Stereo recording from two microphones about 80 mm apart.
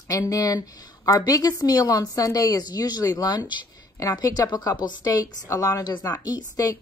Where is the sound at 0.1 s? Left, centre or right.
Left.